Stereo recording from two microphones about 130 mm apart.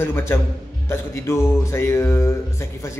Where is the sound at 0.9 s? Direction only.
20° left (ahead or behind).